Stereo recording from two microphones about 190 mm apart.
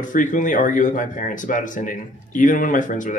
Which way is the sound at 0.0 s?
45° left (ahead or behind).